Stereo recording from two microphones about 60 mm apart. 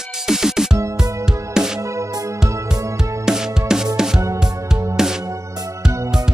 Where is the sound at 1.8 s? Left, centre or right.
Right.